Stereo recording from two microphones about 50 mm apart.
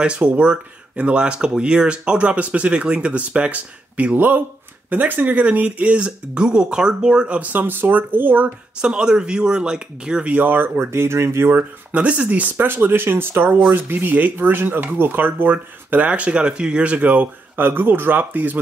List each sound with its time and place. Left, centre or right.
0.0 s speech: right
7.3 s speech: right
7.6 s speech: right
8.8 s speech: centre
10.3 s speech: right
10.8 s speech: right
11.5 s speech: right